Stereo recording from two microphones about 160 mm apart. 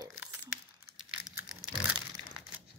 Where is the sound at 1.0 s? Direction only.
5° right (ahead or behind).